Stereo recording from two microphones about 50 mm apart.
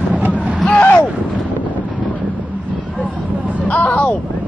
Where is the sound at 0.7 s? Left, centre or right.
Left.